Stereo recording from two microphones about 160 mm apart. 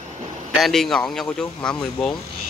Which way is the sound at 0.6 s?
Centre (ahead or behind).